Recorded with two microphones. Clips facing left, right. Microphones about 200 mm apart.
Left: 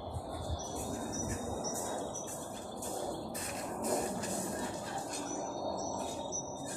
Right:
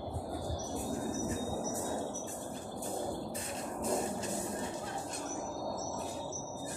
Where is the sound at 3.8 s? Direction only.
25° right (ahead or behind).